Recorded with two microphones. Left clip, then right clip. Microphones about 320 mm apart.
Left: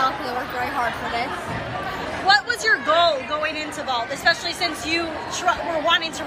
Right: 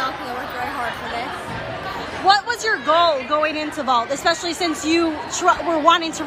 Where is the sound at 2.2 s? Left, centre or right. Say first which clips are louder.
Right 1 dB; centre.